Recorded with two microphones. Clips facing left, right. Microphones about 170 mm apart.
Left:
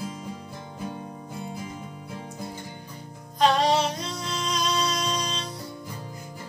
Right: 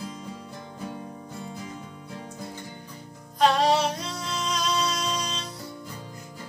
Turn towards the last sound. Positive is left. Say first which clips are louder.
# left 1 dB
turn(degrees=-5)  # may be behind; listen again after turning